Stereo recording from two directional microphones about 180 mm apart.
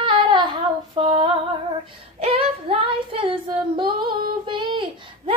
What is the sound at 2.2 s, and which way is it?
Child singing, 35° right (ahead or behind).